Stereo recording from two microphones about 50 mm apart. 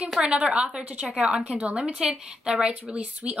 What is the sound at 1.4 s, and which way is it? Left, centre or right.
Speech, right.